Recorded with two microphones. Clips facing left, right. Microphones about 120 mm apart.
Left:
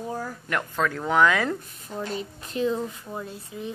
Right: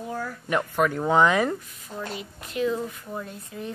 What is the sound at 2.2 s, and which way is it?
Speech, 35° left (ahead or behind).